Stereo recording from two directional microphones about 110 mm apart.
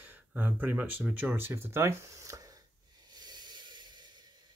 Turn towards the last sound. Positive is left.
turn(degrees=-45)  # may be behind; listen again after turning